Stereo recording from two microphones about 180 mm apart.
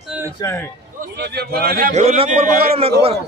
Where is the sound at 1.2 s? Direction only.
60° right (ahead or behind).